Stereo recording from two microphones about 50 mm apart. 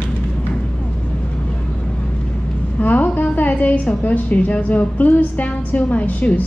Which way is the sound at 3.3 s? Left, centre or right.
Left.